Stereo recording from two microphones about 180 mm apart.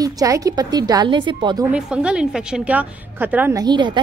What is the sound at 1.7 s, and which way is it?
Speech, 5° right (ahead or behind).